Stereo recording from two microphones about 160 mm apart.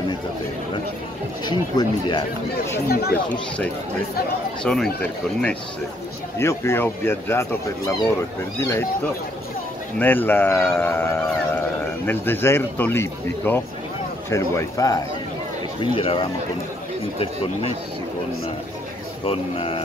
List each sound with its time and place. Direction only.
1.4 s speech: 25° left (ahead or behind)
2.9 s speech: 75° left (ahead or behind)
3.3 s speech: 10° left (ahead or behind)
9.9 s speech: 10° left (ahead or behind)
15.8 s speech: 35° left (ahead or behind)
19.2 s speech: 40° left (ahead or behind)